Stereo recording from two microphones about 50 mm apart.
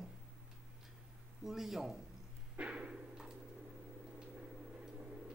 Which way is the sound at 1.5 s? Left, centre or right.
Centre.